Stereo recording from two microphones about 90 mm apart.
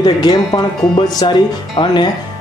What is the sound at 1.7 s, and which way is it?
Speech, 60° left (ahead or behind).